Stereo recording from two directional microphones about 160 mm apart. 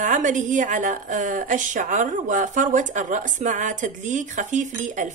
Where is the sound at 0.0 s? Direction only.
55° right (ahead or behind).